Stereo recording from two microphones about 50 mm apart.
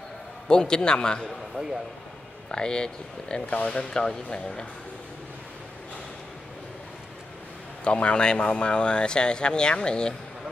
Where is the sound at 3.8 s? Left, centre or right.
Centre.